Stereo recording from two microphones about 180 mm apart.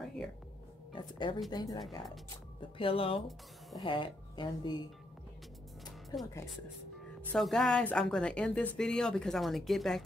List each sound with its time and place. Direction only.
0.9 s speech: 25° left (ahead or behind)
1.8 s speech: centre (ahead or behind)
2.8 s speech: 30° left (ahead or behind)
7.3 s speech: centre (ahead or behind)